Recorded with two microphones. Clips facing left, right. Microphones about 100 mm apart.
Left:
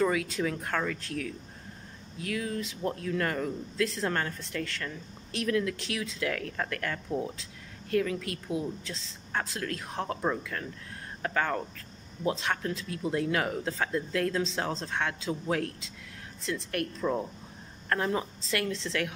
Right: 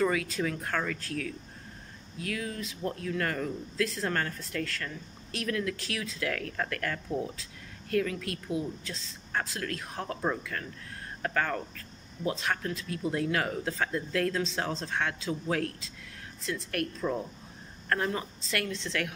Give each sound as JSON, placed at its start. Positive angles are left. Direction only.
{"t": 0.0, "sound": "speech", "side_deg": 25}
{"t": 10.3, "sound": "speech", "side_deg": -5}
{"t": 11.2, "sound": "speech", "side_deg": 20}
{"t": 17.0, "sound": "speech", "side_deg": 0}
{"t": 17.9, "sound": "speech", "side_deg": 20}